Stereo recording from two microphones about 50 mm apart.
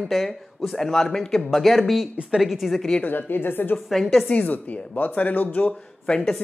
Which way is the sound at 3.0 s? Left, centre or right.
Left.